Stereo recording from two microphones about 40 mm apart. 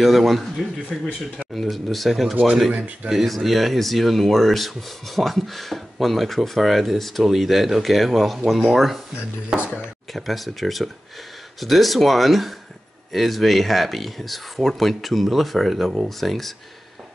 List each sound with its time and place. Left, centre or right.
0.0 s speech: centre
1.5 s speech: centre
9.5 s speech: centre
10.1 s speech: centre